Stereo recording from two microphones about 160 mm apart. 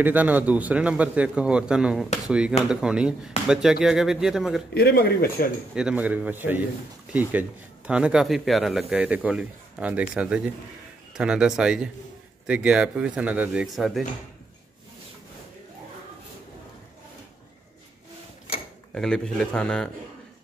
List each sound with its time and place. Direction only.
0.0 s speech: 10° right (ahead or behind)
4.7 s speech: 75° left (ahead or behind)
5.8 s speech: 5° right (ahead or behind)
18.9 s speech: 5° left (ahead or behind)